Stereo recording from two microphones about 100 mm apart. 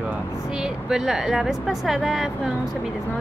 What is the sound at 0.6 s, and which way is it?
Speech, 5° right (ahead or behind).